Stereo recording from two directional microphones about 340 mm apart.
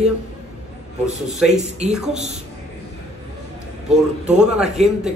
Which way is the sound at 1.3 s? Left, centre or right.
Centre.